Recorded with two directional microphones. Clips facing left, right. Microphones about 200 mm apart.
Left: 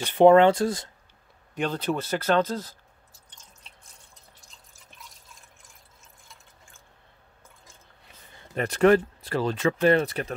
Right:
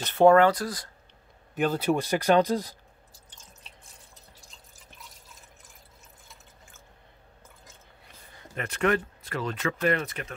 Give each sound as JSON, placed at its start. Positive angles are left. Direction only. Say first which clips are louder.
{"t": 0.0, "sound": "speech", "louder": "left 2 dB", "side_deg": 15}
{"t": 1.5, "sound": "speech", "louder": "right 2 dB", "side_deg": -5}
{"t": 8.5, "sound": "speech", "louder": "left 7 dB", "side_deg": 35}